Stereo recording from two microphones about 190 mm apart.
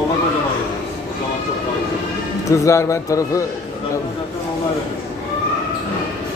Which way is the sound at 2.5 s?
15° left (ahead or behind).